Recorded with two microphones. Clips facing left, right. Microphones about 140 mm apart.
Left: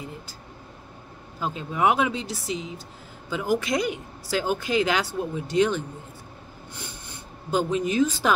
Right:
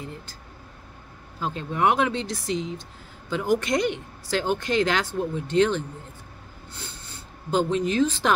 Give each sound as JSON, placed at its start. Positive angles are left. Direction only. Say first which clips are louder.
{"t": 1.6, "sound": "speech", "louder": "even", "side_deg": 5}